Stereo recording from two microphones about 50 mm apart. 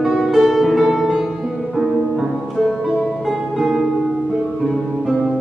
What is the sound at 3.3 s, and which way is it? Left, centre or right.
Music, centre.